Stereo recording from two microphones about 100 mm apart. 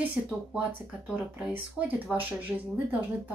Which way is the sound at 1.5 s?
15° right (ahead or behind).